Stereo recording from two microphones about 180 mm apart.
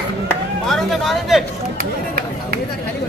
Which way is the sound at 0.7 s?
Centre (ahead or behind).